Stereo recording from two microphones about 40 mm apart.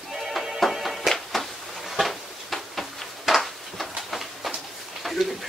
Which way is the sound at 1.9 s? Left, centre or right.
Centre.